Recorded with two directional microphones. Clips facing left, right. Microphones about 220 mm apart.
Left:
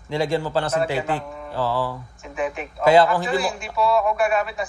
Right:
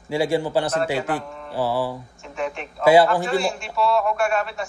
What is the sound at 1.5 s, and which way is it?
Speech, 15° right (ahead or behind).